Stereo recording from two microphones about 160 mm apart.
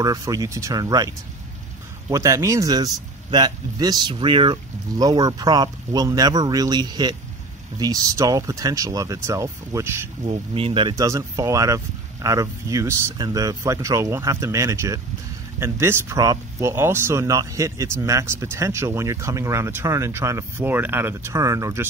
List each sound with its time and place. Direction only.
0.0 s speech: 20° right (ahead or behind)
10.5 s speech: 35° right (ahead or behind); by 21.8 s 20° right (ahead or behind)